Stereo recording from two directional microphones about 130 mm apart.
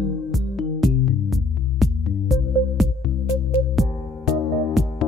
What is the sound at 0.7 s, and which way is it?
Music, centre (ahead or behind).